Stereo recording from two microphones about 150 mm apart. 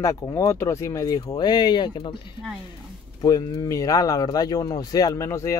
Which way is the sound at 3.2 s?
25° left (ahead or behind).